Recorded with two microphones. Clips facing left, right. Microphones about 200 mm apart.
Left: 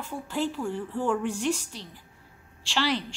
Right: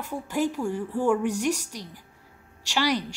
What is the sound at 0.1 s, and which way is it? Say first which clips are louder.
A woman's voice: right 3 dB; 10° right (ahead or behind).